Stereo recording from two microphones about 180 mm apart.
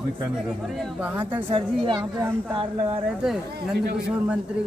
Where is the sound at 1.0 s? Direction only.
10° right (ahead or behind).